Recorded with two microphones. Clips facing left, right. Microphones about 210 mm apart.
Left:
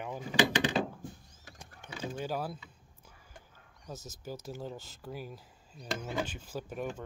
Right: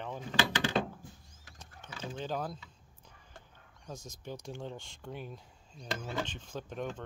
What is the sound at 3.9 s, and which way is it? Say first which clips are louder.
Speech: left 1 dB; 5° left (ahead or behind).